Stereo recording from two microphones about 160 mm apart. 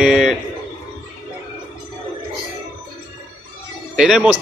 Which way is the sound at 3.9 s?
5° right (ahead or behind).